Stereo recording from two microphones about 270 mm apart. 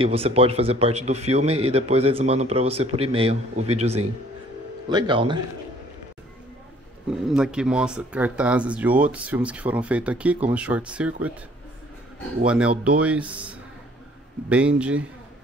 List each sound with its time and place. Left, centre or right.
0.0 s speech: right
7.1 s speech: centre
12.4 s speech: centre